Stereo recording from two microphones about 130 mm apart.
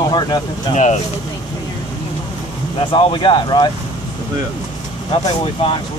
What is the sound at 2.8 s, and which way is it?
Speech, 40° left (ahead or behind).